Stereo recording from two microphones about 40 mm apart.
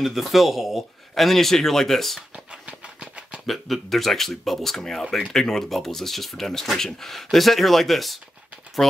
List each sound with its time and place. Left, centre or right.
0.0 s speech: centre
2.3 s a sound: right
3.4 s speech: centre